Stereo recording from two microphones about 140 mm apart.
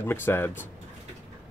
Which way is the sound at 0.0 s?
15° left (ahead or behind).